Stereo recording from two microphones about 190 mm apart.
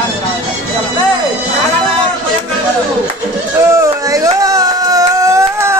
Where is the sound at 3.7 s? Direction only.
15° right (ahead or behind).